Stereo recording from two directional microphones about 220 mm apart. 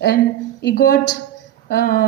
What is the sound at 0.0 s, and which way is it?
Speech, 45° left (ahead or behind).